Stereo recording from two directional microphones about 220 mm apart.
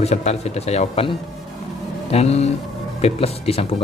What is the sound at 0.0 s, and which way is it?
Speech, 30° left (ahead or behind).